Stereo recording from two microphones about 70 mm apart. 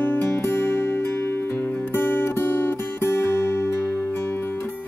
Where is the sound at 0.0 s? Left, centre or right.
Left.